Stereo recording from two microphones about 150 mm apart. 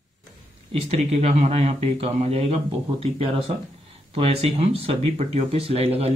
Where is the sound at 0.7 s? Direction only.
45° right (ahead or behind).